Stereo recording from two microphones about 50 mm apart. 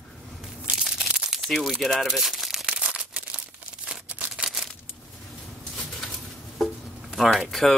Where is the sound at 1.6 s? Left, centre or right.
Centre.